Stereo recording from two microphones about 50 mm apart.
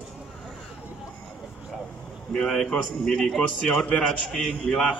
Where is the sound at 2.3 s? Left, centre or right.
Centre.